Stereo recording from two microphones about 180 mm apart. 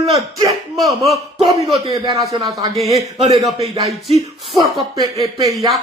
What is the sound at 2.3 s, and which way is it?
Speech, 20° right (ahead or behind).